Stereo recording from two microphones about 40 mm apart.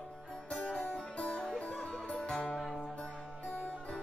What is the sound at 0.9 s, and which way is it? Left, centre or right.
Music, left.